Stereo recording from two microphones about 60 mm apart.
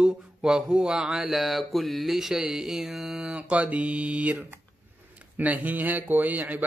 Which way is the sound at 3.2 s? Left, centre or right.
Centre.